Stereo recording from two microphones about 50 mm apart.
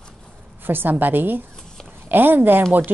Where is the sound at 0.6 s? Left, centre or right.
Right.